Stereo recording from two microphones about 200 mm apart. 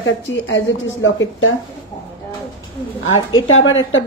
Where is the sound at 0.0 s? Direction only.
65° left (ahead or behind).